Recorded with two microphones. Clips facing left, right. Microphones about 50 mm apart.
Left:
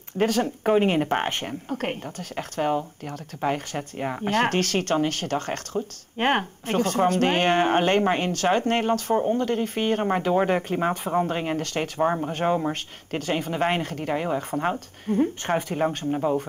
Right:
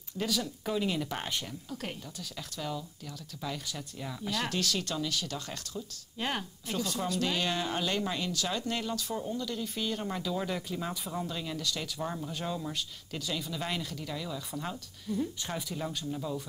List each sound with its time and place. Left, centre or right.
0.1 s speech: left